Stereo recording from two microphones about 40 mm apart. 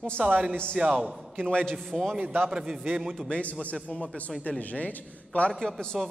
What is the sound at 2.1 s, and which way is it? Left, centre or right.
Speech, right.